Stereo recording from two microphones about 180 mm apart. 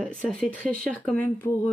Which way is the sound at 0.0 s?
5° left (ahead or behind).